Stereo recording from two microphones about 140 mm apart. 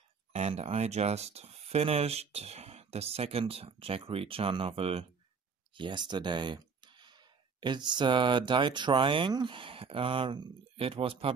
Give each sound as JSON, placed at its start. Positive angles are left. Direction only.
{"t": 0.3, "sound": "speech", "side_deg": -50}